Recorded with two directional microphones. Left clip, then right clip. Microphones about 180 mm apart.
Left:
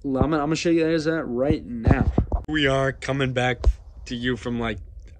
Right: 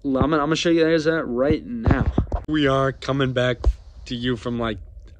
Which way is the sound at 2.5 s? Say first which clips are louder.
Right 2 dB; 15° right (ahead or behind).